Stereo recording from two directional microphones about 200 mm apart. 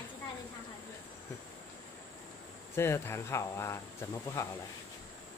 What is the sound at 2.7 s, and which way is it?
Speech, 10° left (ahead or behind).